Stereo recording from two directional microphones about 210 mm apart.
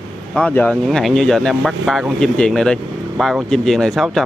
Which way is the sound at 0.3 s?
5° left (ahead or behind).